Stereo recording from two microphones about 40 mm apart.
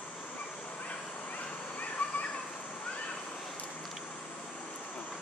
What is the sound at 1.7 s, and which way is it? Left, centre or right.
Children playing, left.